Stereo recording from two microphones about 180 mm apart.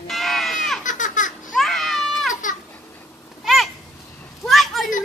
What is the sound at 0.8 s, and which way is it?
Baby laughter, 45° left (ahead or behind).